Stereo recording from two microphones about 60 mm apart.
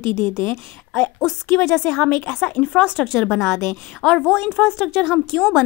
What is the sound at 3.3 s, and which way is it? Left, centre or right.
Speech, left.